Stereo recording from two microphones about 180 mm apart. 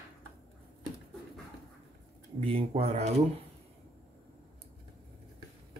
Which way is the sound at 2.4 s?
30° right (ahead or behind).